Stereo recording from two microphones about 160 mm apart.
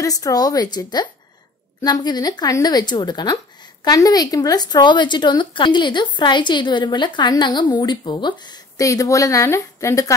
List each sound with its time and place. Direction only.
0.0 s speech: 20° left (ahead or behind)